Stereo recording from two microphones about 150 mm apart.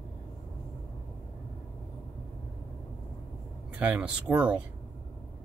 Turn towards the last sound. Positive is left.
turn(degrees=-10)  # may be behind; listen again after turning